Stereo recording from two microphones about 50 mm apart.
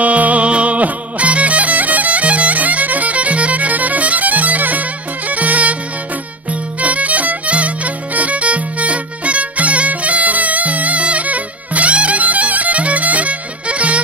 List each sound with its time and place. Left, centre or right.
0.0 s music: right